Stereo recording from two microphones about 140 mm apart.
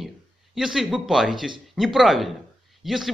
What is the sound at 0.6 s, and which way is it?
Speech, 5° right (ahead or behind).